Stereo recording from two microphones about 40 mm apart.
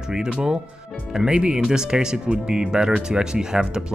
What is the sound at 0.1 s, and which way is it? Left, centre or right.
Speech, centre.